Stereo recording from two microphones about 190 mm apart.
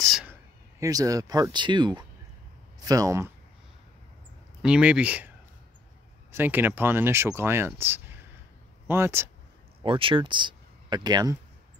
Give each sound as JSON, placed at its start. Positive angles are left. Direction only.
{"t": 0.0, "sound": "speech", "side_deg": -5}
{"t": 4.6, "sound": "speech", "side_deg": -5}
{"t": 6.3, "sound": "speech", "side_deg": -10}
{"t": 9.8, "sound": "speech", "side_deg": -25}